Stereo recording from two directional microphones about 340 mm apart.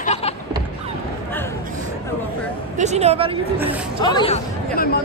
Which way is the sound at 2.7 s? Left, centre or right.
Centre.